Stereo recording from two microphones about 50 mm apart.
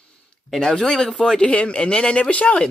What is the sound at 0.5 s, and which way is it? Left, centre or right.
Speech, centre.